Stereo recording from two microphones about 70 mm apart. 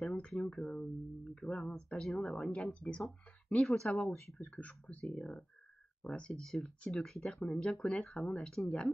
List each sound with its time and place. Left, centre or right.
0.0 s speech: centre
4.4 s speech: centre